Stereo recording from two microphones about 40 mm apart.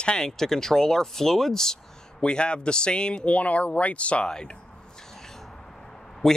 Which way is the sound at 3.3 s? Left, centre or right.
Left.